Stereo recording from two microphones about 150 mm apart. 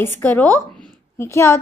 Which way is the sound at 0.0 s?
15° left (ahead or behind).